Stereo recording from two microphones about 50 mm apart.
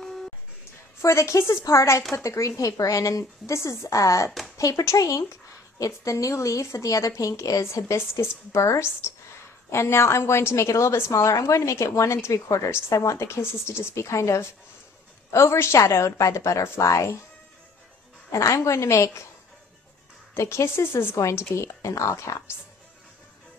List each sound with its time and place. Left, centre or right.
0.0 s a sound: centre
1.0 s speech: left
2.1 s speech: left
3.4 s a woman's voice: left
15.3 s a woman's voice: left
16.6 s speech: left
18.3 s a woman's voice: left
20.3 s speech: left
21.2 s a woman's voice: left